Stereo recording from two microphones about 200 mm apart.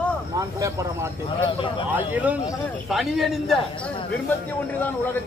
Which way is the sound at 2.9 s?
Centre (ahead or behind).